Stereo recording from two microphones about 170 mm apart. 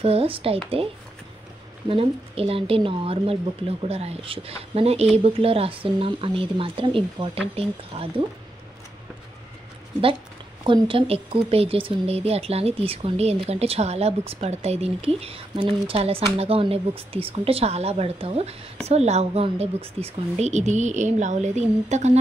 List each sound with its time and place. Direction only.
0.0 s a woman's voice: 35° right (ahead or behind)
1.9 s a woman's voice: 35° right (ahead or behind)
10.6 s a woman's voice: 30° right (ahead or behind)